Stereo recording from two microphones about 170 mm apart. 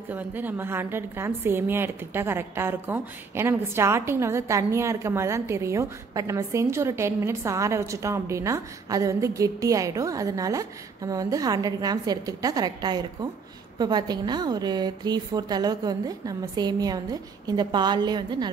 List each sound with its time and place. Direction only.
0.1 s a woman's voice: 10° right (ahead or behind); by 18.5 s 25° right (ahead or behind)